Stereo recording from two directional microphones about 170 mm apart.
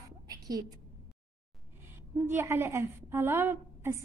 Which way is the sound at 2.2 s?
15° right (ahead or behind).